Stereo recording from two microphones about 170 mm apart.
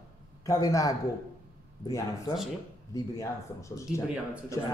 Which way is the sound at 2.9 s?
20° left (ahead or behind).